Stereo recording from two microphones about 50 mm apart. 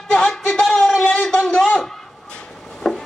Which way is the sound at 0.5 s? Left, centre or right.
Centre.